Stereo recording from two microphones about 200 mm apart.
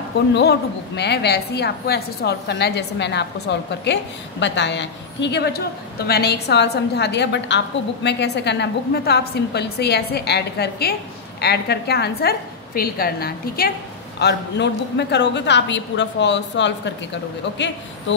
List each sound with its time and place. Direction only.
0.3 s a woman's voice: 55° left (ahead or behind)